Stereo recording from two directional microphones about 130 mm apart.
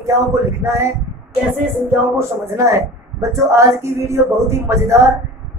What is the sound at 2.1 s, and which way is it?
Speech, 20° right (ahead or behind).